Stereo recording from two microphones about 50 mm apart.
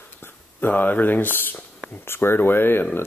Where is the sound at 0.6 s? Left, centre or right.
Left.